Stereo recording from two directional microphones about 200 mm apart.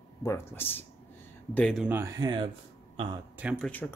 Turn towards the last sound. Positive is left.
turn(degrees=10)  # may be behind; listen again after turning